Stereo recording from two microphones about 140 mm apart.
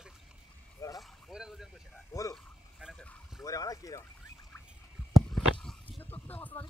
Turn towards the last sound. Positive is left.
turn(degrees=15)  # may be behind; listen again after turning